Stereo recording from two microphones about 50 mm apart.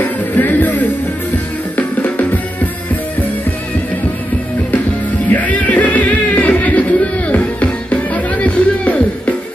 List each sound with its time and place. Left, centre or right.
0.0 s music: left
5.3 s music: left